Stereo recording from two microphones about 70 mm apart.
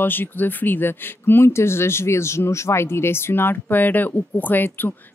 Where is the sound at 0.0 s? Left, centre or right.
Left.